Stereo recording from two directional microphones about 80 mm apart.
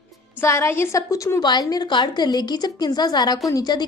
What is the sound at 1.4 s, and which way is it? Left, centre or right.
A woman's voice, left.